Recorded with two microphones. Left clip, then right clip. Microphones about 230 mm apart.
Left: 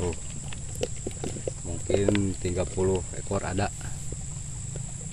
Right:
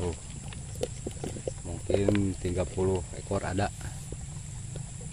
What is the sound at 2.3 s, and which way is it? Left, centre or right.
Cricket, centre.